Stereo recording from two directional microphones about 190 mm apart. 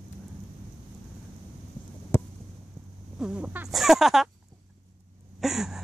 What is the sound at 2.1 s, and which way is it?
Hum, 15° left (ahead or behind).